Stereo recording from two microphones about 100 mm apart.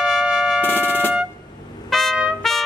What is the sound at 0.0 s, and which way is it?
Music, centre (ahead or behind).